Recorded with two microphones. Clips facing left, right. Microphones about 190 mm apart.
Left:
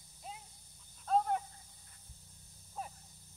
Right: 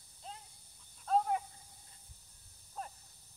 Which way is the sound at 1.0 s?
Centre (ahead or behind).